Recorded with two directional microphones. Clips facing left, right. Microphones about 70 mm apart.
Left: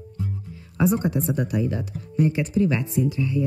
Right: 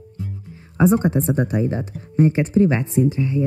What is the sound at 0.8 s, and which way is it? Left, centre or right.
Speech, right.